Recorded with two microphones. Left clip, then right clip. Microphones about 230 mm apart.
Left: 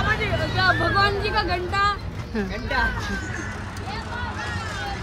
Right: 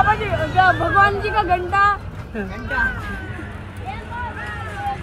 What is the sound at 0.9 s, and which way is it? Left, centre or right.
Vehicle, right.